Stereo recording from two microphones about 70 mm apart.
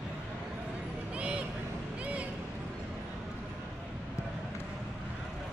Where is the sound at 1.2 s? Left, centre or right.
Centre.